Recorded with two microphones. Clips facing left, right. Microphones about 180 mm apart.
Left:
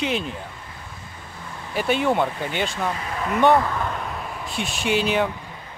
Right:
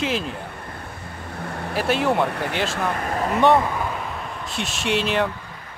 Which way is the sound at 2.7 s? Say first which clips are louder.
Right 3 dB; 60° right (ahead or behind).